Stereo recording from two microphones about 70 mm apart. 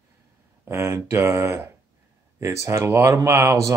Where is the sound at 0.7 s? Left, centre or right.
Right.